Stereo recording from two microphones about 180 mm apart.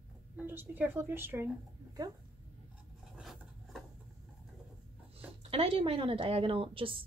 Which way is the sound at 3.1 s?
Centre (ahead or behind).